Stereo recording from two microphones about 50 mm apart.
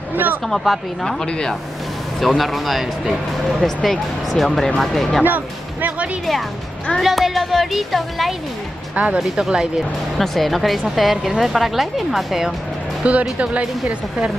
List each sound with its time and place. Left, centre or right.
0.1 s speech: right
0.7 s a woman's voice: centre
1.0 s speech: centre
2.1 s a woman's voice: centre
3.6 s a woman's voice: centre
5.2 s speech: right
7.0 s a woman's voice: centre
8.9 s speech: right
9.5 s speech: centre
10.1 s a woman's voice: centre
13.0 s speech: right